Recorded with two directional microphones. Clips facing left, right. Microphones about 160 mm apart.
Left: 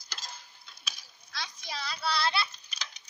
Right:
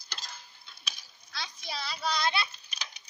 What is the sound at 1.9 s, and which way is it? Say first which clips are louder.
Child singing: left 1 dB; 15° right (ahead or behind).